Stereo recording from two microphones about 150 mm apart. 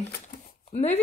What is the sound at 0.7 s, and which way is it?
Speech, 50° left (ahead or behind).